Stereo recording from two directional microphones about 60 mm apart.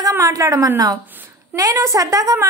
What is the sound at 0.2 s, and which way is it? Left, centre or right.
A woman's voice, right.